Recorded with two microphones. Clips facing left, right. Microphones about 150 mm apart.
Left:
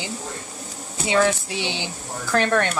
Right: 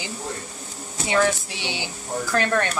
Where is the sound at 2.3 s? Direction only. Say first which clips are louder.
Left 3 dB; 20° left (ahead or behind).